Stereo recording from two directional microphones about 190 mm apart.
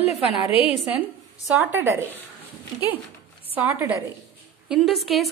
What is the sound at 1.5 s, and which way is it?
Speech, 10° right (ahead or behind).